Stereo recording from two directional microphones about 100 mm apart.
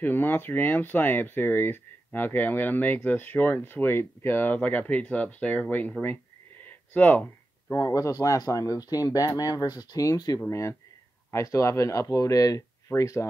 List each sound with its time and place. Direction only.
0.0 s speech: 20° left (ahead or behind)
6.6 s a sound: 15° left (ahead or behind)
7.7 s speech: 35° left (ahead or behind)
10.5 s speech: 30° left (ahead or behind)